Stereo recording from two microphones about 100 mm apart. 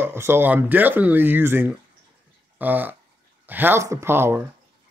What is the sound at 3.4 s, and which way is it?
Speech, 20° right (ahead or behind).